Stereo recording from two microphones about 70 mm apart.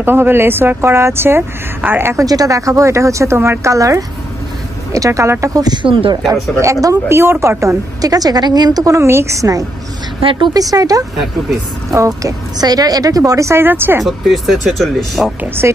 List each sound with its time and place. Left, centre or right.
0.0 s speech: right
2.1 s speech: right
5.5 s speech: right
6.6 s a woman's voice: right
9.0 s speech: right
10.4 s a woman's voice: right
14.0 s speech: centre
15.4 s speech: right